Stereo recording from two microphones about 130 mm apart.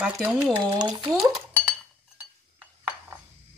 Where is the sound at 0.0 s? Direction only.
5° right (ahead or behind).